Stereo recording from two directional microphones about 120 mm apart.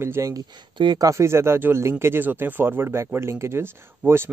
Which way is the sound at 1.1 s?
25° right (ahead or behind).